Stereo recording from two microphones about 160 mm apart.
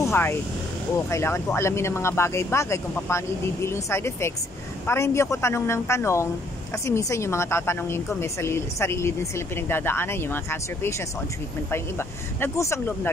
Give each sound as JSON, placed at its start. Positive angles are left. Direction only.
{"t": 0.0, "sound": "a woman's voice", "side_deg": 15}